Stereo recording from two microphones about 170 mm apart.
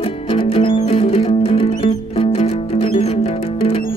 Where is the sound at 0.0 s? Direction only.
30° left (ahead or behind).